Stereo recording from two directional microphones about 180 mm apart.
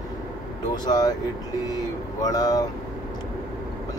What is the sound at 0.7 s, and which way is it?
Speech, 20° left (ahead or behind).